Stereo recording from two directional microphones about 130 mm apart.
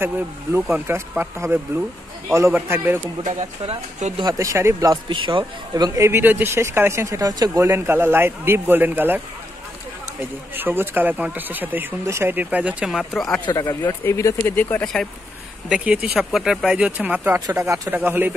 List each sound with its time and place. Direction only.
0.0 s speech: 15° right (ahead or behind)
3.3 s speech: 65° right (ahead or behind)
4.2 s speech: 25° right (ahead or behind)
5.1 s speech: 40° right (ahead or behind)
5.4 s speech: 25° right (ahead or behind)
10.5 s speech: 15° right (ahead or behind); by 13.4 s centre (ahead or behind)
13.7 s speech: 20° left (ahead or behind)
15.7 s speech: 5° right (ahead or behind)